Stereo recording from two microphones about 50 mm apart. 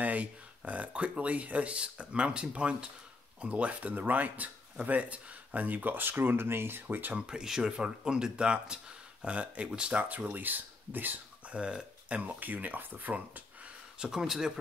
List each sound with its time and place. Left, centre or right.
0.0 s speech: right
7.2 s speech: centre; by 11.1 s right
11.5 s speech: right
12.3 s speech: right
13.9 s speech: centre